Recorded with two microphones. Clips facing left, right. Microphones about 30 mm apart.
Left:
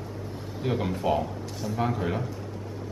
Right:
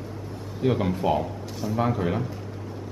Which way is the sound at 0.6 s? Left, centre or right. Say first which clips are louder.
Right 4 dB; centre.